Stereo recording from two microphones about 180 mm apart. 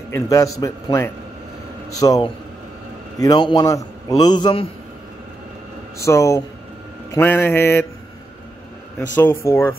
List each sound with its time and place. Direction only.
0.1 s a man's voice: 20° left (ahead or behind)
5.9 s a man's voice: 15° left (ahead or behind)
9.1 s a man's voice: 10° left (ahead or behind)